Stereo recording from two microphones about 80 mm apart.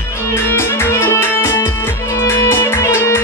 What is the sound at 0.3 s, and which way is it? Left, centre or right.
Music, left.